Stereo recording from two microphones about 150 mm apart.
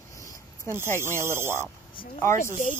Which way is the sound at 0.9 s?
15° right (ahead or behind).